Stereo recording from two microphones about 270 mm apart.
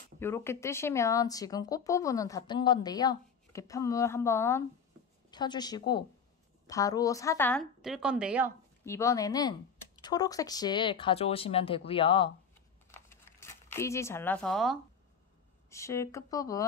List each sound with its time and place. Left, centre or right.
0.2 s a woman's voice: centre
8.8 s speech: centre
12.9 s crumpling: centre
15.7 s speech: centre